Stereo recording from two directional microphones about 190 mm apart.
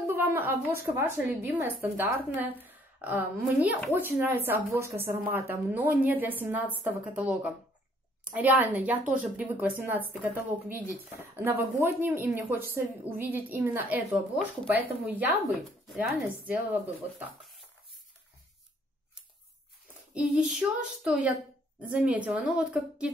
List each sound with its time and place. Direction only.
0.0 s a woman's voice: 10° right (ahead or behind)
20.2 s child singing: 5° right (ahead or behind)
21.8 s a woman's voice: 10° right (ahead or behind)